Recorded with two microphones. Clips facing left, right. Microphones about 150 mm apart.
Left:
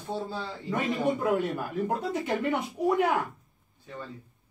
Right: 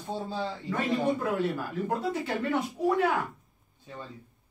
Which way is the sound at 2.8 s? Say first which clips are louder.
Left 1 dB; 15° left (ahead or behind).